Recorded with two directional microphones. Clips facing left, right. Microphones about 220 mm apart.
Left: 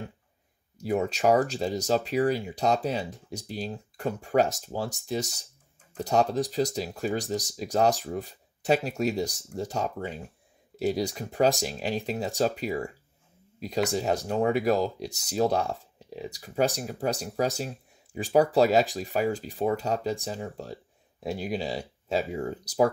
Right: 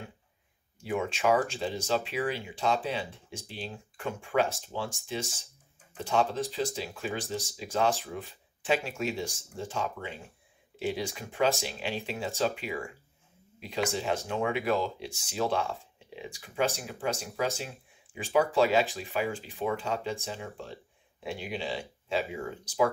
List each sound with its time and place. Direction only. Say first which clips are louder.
0.7 s speech: left 5 dB; 40° left (ahead or behind)